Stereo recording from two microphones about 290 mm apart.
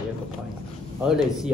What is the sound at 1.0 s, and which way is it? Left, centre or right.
Speech, centre.